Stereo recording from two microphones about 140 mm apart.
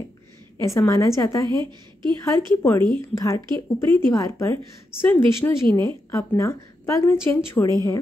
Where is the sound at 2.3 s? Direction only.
15° left (ahead or behind).